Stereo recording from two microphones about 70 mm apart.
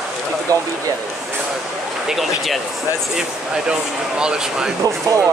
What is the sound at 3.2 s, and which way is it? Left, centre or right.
Speech, centre.